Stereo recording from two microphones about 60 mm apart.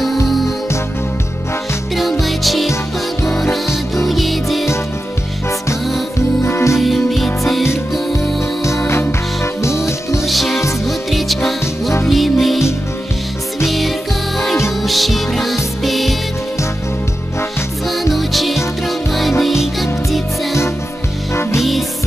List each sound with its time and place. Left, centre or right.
2.0 s music: centre
4.1 s music: centre
6.4 s music: left
6.8 s music: centre
8.4 s music: left
10.2 s music: centre
13.7 s music for children: centre
14.8 s music: centre
17.8 s music: centre
21.3 s music: left